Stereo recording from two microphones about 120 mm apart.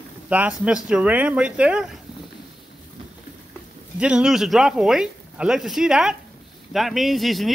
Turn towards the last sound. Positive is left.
turn(degrees=0)  # may be behind; listen again after turning